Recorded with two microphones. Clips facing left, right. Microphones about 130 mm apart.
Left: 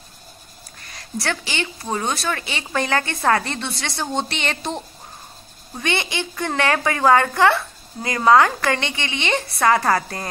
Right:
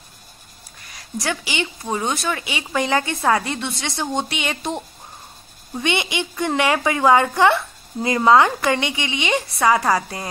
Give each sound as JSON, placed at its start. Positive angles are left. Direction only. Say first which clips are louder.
{"t": 1.1, "sound": "a woman's voice", "louder": "right 1 dB", "side_deg": -15}